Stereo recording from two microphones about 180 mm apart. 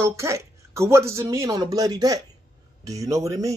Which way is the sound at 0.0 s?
15° right (ahead or behind).